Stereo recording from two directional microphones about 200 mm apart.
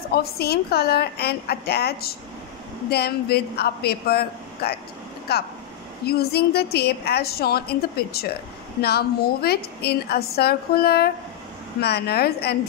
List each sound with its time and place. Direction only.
0.1 s a woman's voice: 50° left (ahead or behind)